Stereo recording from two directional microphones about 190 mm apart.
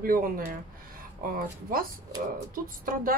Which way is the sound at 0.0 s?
50° right (ahead or behind).